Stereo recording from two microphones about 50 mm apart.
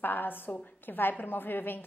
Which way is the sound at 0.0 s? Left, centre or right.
Left.